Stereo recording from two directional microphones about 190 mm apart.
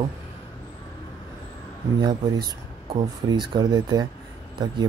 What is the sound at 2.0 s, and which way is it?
Speech, 20° right (ahead or behind).